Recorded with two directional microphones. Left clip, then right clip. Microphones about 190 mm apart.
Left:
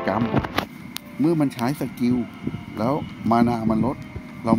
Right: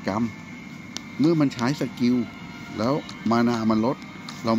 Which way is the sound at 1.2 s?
5° left (ahead or behind).